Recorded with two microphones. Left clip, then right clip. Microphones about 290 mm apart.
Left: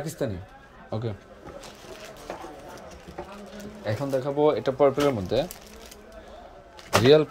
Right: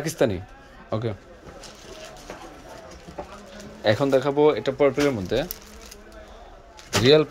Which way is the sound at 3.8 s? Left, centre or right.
Centre.